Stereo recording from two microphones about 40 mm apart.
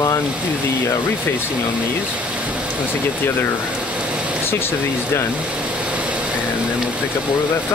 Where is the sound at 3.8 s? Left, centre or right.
Right.